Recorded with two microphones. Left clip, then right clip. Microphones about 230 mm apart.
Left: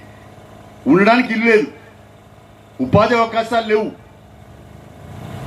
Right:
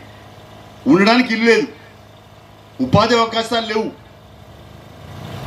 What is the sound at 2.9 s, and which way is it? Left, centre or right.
Speech, right.